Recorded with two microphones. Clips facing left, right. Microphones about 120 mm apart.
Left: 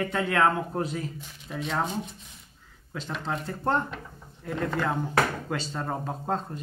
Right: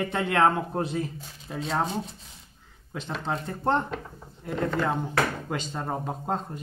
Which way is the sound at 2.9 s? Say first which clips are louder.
Right 1 dB; 25° right (ahead or behind).